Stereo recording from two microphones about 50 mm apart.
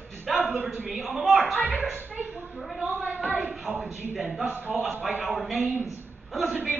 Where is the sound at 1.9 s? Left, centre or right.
Right.